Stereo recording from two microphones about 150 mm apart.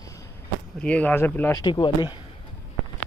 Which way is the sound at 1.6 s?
30° left (ahead or behind).